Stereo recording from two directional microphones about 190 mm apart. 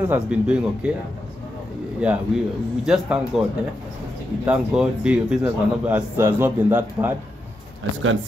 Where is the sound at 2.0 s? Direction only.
5° right (ahead or behind).